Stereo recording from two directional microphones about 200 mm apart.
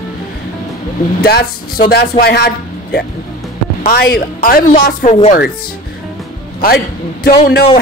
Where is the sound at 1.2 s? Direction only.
50° left (ahead or behind).